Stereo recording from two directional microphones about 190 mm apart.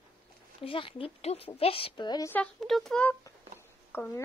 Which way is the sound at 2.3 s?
5° left (ahead or behind).